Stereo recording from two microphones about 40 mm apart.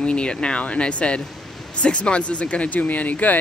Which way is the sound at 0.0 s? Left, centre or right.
Left.